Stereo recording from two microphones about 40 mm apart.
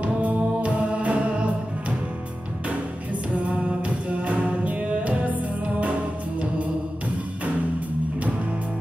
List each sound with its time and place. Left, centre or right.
0.0 s music: right
3.3 s music: right